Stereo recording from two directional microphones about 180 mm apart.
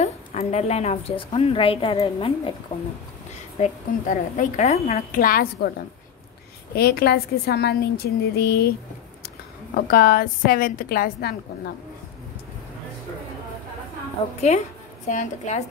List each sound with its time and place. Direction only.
0.0 s a woman's voice: 35° left (ahead or behind)
3.5 s a woman's voice: 40° left (ahead or behind)
5.2 s a woman's voice: 55° left (ahead or behind)
9.8 s a woman's voice: 55° left (ahead or behind)
14.5 s a woman's voice: 40° left (ahead or behind)